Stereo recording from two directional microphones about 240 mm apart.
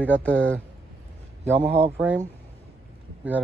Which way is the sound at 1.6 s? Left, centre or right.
Right.